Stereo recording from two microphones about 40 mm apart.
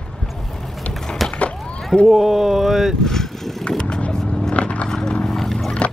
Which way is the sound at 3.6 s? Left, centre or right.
Left.